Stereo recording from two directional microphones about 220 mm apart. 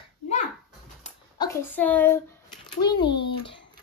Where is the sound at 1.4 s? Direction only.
10° left (ahead or behind).